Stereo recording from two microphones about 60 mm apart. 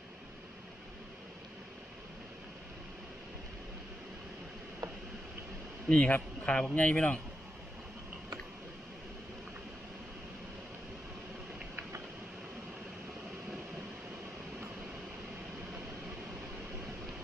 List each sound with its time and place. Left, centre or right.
5.9 s speech: left